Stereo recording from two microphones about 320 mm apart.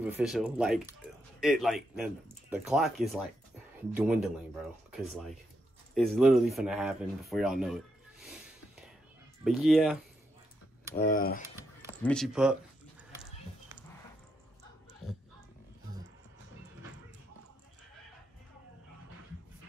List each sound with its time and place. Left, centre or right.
0.0 s speech: centre
5.9 s speech: centre
8.3 s a sound: centre
9.4 s speech: centre
11.0 s mechanisms: left
11.4 s a sound: centre
12.0 s speech: centre